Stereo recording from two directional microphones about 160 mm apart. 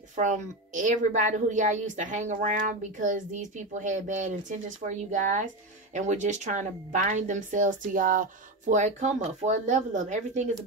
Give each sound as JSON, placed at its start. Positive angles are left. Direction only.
{"t": 0.1, "sound": "a woman's voice", "side_deg": -55}